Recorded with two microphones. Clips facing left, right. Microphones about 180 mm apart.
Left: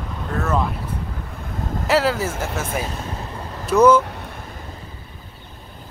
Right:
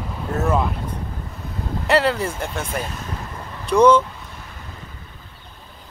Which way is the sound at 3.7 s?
5° left (ahead or behind).